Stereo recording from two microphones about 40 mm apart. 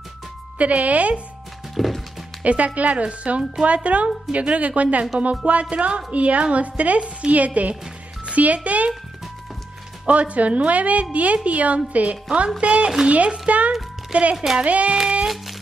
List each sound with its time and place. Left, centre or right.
0.6 s a woman's voice: right
1.8 s music: centre
2.4 s a woman's voice: right
5.2 s music: right
6.1 s a woman's voice: right
10.0 s a woman's voice: right
12.5 s music: right
13.1 s a woman's voice: right
14.3 s speech: centre
14.6 s a woman's voice: right
15.0 s music: centre